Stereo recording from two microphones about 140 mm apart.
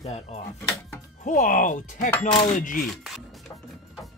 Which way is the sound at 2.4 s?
65° left (ahead or behind).